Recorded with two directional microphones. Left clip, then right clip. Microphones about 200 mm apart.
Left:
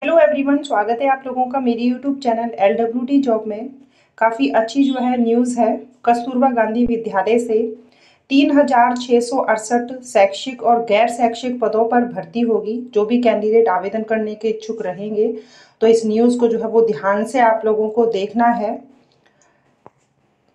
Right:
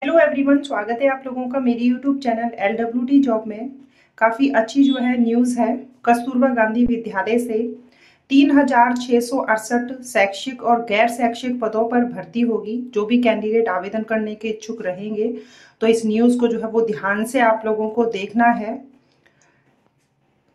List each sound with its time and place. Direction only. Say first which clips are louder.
0.0 s a woman's voice: left 2 dB; centre (ahead or behind)